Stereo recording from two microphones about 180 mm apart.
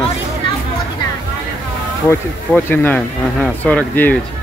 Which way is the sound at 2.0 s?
10° left (ahead or behind).